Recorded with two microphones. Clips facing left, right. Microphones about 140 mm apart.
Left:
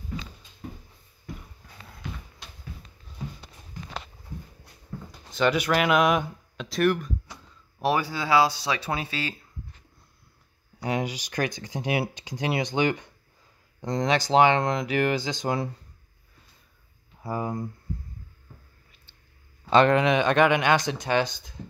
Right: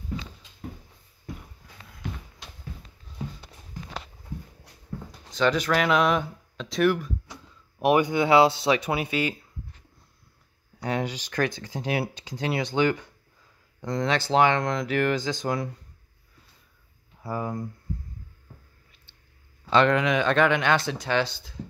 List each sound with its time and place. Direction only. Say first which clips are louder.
5.3 s speech: even; 5° left (ahead or behind)
7.8 s speech: right 5 dB; 20° right (ahead or behind)
10.8 s speech: even; 10° left (ahead or behind)
17.2 s speech: left 1 dB; 15° left (ahead or behind)
19.9 s speech: left 2 dB; 25° left (ahead or behind)